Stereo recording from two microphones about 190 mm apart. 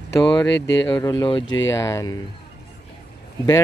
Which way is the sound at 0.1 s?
20° left (ahead or behind).